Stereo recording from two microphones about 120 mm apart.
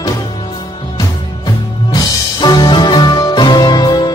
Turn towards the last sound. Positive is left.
turn(degrees=35)  # may be behind; listen again after turning